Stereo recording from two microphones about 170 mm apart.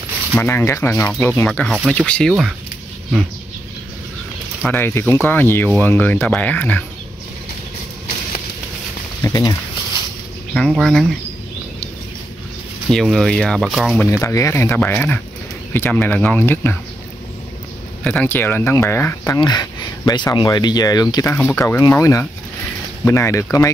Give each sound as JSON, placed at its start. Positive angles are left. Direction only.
{"t": 0.3, "sound": "speech", "side_deg": 10}
{"t": 4.6, "sound": "speech", "side_deg": 10}
{"t": 9.2, "sound": "speech", "side_deg": 20}
{"t": 10.5, "sound": "speech", "side_deg": 0}
{"t": 12.9, "sound": "speech", "side_deg": 0}
{"t": 14.1, "sound": "speech", "side_deg": 15}
{"t": 18.0, "sound": "speech", "side_deg": 10}
{"t": 21.3, "sound": "speech", "side_deg": 10}